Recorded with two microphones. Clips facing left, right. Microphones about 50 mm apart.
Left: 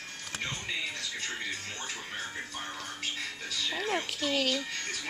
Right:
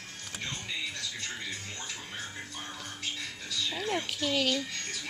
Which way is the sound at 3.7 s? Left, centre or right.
Left.